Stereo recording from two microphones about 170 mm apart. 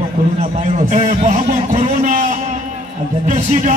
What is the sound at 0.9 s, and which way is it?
A man's voice, 45° right (ahead or behind).